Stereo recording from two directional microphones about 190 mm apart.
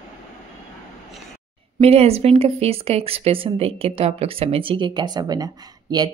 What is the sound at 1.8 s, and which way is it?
A woman's voice, 30° right (ahead or behind).